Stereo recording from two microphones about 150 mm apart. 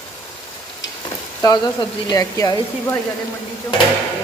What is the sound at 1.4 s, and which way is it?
Speech, 25° left (ahead or behind).